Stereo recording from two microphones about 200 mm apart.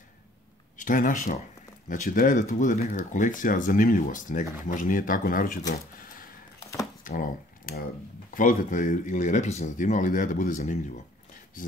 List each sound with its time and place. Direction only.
0.7 s speech: 40° left (ahead or behind)
7.0 s a sound: 45° left (ahead or behind)
8.4 s speech: 45° left (ahead or behind)